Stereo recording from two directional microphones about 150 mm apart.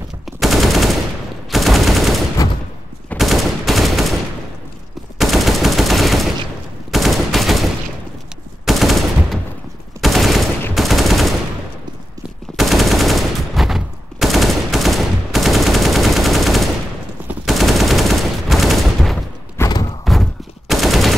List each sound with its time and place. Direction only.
0.4 s machine gun: centre (ahead or behind)
2.4 s a sound: 25° left (ahead or behind)
3.2 s gunshot: centre (ahead or behind)
5.2 s machine gun: centre (ahead or behind)
6.9 s gunshot: centre (ahead or behind)
8.6 s machine gun: centre (ahead or behind)
12.5 s machine gun: centre (ahead or behind)
19.6 s a sound: 20° left (ahead or behind)
20.1 s gunshot: centre (ahead or behind)